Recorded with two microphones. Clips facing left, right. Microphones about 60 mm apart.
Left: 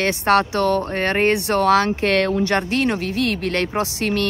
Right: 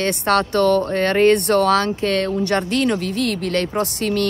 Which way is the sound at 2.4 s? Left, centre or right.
Left.